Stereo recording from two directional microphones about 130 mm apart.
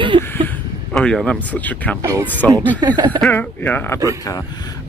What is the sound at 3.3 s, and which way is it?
Speech, 15° left (ahead or behind).